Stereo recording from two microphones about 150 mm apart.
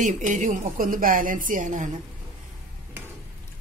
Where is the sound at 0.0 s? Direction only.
60° right (ahead or behind).